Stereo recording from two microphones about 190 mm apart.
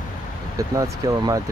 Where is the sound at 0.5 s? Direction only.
15° right (ahead or behind).